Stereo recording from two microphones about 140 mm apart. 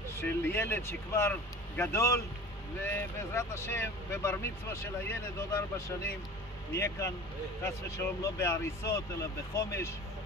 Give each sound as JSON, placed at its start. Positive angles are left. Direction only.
{"t": 0.1, "sound": "speech", "side_deg": 15}
{"t": 6.7, "sound": "speech", "side_deg": 20}